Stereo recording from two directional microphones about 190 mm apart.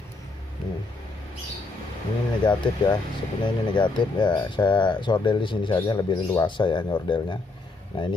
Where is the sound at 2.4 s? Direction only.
25° left (ahead or behind).